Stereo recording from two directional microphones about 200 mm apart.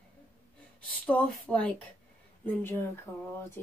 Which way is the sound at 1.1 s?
5° left (ahead or behind).